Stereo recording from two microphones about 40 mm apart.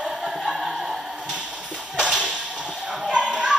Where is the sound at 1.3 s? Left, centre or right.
Right.